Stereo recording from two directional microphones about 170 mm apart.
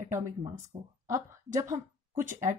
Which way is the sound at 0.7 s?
35° right (ahead or behind).